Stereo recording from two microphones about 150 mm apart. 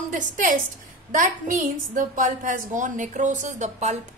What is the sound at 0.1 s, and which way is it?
A woman's voice, 60° right (ahead or behind).